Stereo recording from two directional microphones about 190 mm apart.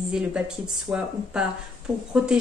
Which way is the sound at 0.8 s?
5° right (ahead or behind).